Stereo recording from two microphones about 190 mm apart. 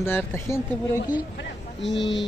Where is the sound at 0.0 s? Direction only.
10° left (ahead or behind).